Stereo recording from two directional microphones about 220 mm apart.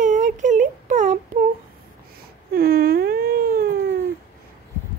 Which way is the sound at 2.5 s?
40° right (ahead or behind).